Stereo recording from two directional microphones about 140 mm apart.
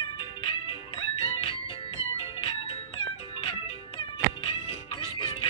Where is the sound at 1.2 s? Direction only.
40° left (ahead or behind).